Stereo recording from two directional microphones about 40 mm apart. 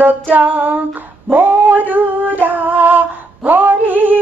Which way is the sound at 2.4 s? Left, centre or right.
Right.